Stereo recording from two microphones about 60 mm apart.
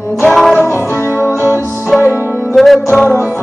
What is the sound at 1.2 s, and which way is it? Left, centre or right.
Music, right.